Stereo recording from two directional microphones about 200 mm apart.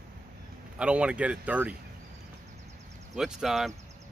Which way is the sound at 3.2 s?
Centre (ahead or behind).